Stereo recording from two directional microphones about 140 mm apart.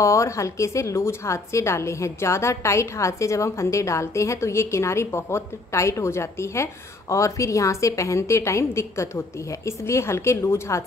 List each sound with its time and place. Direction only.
0.0 s a woman's voice: 20° left (ahead or behind)